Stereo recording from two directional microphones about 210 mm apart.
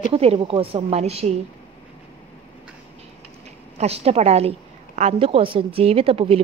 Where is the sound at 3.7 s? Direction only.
30° right (ahead or behind).